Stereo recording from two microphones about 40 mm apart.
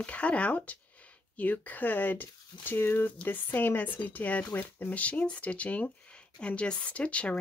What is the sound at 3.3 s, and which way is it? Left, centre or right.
Speech, left.